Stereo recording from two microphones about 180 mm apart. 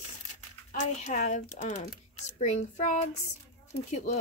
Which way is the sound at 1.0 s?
45° left (ahead or behind).